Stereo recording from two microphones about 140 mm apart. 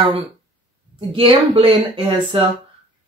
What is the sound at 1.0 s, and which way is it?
Speech, 40° right (ahead or behind).